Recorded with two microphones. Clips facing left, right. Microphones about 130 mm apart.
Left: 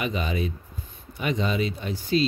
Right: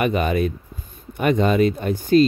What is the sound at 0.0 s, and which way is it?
Speech, 55° right (ahead or behind).